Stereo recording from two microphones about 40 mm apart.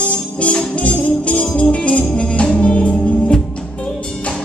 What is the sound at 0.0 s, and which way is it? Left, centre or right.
Music, left.